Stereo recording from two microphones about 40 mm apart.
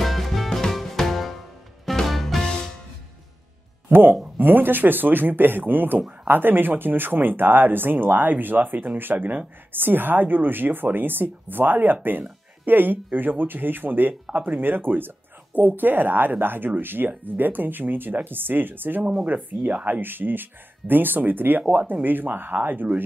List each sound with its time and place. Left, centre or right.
0.0 s music: centre
2.4 s music: centre
3.9 s a woman's voice: right
14.3 s speech: right
14.6 s a woman's voice: right
19.6 s speech: right
20.0 s a woman's voice: right